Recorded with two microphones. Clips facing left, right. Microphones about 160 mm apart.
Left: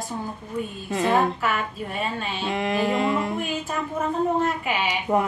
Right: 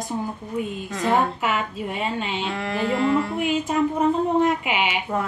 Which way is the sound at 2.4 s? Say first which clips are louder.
Left 5 dB; 15° left (ahead or behind).